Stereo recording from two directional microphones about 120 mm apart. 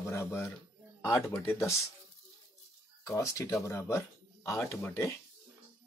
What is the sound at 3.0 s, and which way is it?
Speech, 25° left (ahead or behind).